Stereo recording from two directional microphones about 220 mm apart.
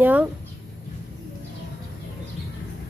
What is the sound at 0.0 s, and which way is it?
Speech, 5° right (ahead or behind).